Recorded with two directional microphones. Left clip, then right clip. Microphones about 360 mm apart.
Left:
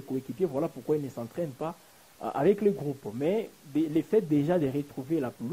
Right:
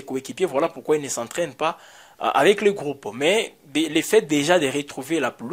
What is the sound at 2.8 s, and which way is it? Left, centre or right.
Speech, centre.